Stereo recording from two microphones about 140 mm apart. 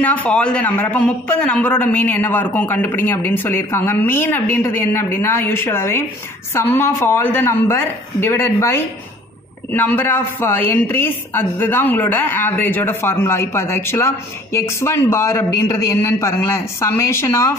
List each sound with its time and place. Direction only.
0.0 s a woman's voice: 10° left (ahead or behind)